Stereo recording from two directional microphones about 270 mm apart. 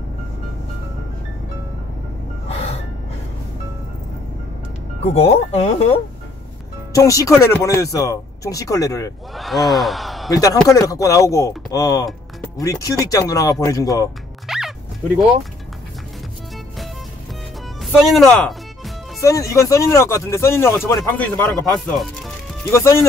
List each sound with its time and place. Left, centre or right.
2.5 s music: left
5.0 s speech: left
6.9 s speech: centre
9.3 s sigh: centre
10.3 s speech: centre
14.5 s music: centre
18.0 s sigh: centre
19.2 s speech: centre